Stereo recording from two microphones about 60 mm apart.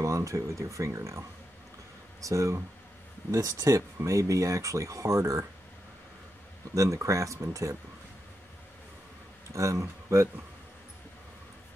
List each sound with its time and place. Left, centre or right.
0.0 s speech: right
2.2 s speech: right
6.7 s speech: right
9.5 s speech: right